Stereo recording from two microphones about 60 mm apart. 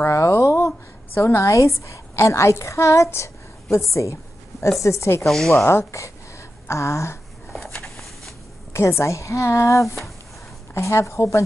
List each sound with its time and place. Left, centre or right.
0.0 s a sound: left
0.6 s a woman's voice: left
5.2 s a woman's voice: centre
5.7 s a woman's voice: left
7.5 s a sound: centre
8.7 s a woman's voice: left